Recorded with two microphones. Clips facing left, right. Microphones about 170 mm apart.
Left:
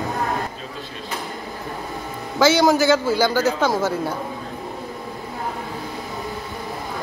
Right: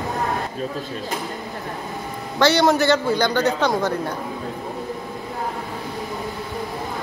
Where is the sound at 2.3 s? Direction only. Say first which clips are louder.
Left 1 dB; centre (ahead or behind).